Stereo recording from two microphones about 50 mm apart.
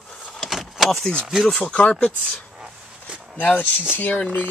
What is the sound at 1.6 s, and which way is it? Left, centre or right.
Speech, centre.